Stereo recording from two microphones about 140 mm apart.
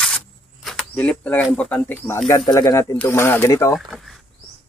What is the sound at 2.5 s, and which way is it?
Speech, 25° left (ahead or behind).